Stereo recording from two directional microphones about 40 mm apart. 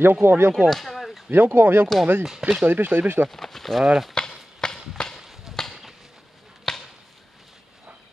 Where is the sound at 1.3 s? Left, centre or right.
Right.